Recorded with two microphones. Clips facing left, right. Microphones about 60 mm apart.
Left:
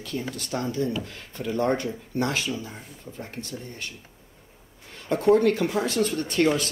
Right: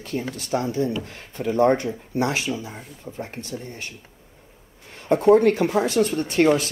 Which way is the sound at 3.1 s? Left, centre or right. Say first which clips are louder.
Right 5 dB; right.